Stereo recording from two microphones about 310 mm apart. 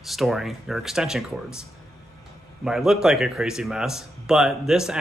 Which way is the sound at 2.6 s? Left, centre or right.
Centre.